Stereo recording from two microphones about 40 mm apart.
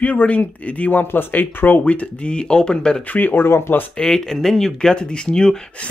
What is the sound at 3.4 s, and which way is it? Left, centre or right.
Speech, left.